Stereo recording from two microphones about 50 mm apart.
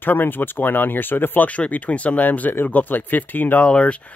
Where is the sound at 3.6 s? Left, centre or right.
Left.